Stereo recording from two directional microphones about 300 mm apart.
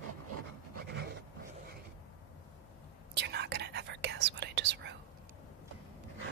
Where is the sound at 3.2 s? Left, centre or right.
Right.